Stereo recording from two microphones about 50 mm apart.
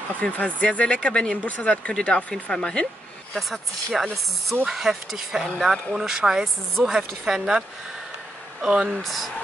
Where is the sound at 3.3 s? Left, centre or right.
Centre.